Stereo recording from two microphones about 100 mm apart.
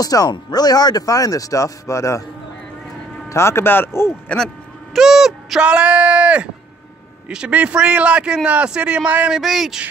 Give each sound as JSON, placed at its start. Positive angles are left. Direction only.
{"t": 0.0, "sound": "speech", "side_deg": 40}
{"t": 3.3, "sound": "speech", "side_deg": 25}
{"t": 4.9, "sound": "a man's voice", "side_deg": -5}
{"t": 9.4, "sound": "speech", "side_deg": 0}